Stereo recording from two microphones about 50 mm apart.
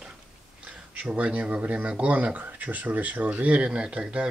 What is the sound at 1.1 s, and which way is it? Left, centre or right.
Speech, right.